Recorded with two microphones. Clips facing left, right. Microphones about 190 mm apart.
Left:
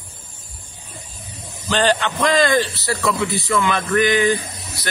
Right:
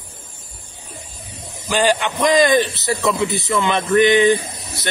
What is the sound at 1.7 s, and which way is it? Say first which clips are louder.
A man's voice: right 1 dB; 10° right (ahead or behind).